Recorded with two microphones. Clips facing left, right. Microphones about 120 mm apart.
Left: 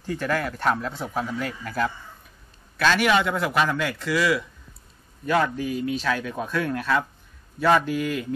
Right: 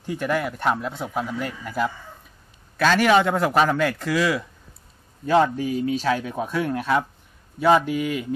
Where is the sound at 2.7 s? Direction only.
40° right (ahead or behind).